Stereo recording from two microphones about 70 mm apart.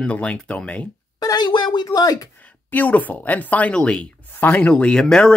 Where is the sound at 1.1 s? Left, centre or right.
Left.